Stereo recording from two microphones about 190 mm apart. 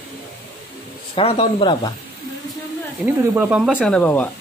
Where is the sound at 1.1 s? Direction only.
30° left (ahead or behind).